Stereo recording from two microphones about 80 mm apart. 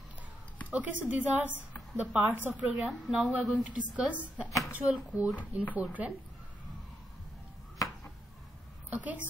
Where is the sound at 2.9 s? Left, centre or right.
Centre.